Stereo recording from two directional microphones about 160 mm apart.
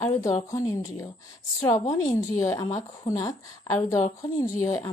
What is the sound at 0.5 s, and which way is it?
A woman's voice, 20° left (ahead or behind).